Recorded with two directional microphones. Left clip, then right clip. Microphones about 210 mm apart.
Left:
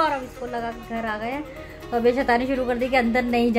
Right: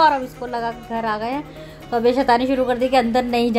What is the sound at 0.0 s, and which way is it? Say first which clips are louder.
Speech: right 7 dB; 15° right (ahead or behind).